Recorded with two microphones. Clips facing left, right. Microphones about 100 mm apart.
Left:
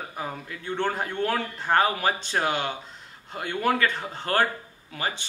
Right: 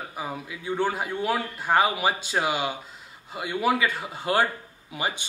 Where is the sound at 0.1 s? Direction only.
5° right (ahead or behind).